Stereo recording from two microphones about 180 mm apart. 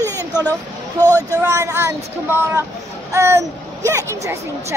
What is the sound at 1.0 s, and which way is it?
Speech, 10° left (ahead or behind).